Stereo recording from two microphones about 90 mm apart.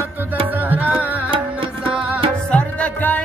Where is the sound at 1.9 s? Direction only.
15° right (ahead or behind).